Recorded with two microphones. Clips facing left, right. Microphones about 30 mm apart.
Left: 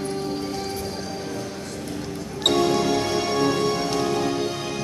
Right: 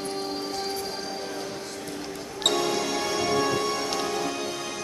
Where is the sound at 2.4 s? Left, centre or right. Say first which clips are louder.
Left 5 dB; centre.